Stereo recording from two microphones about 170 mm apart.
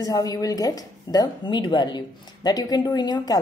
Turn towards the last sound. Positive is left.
turn(degrees=25)  # may be behind; listen again after turning